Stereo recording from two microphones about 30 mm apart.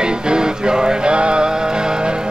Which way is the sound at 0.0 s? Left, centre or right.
Right.